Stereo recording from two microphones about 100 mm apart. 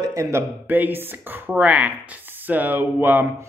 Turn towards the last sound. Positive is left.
turn(degrees=-20)  # may be behind; listen again after turning